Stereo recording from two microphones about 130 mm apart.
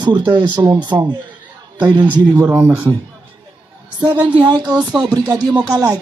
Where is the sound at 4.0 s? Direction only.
35° right (ahead or behind).